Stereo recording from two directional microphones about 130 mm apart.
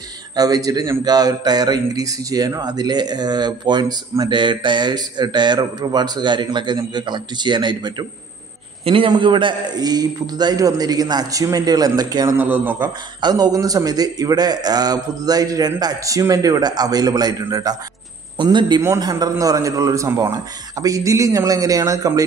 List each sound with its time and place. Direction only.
0.4 s speech: 30° right (ahead or behind)
12.4 s speech: 15° right (ahead or behind)
13.2 s a man's voice: 30° right (ahead or behind)